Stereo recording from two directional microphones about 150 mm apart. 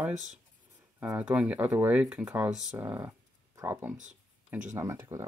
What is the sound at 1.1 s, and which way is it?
Speech, 10° right (ahead or behind).